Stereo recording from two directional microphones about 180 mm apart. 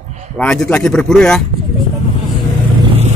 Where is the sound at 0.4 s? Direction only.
5° left (ahead or behind).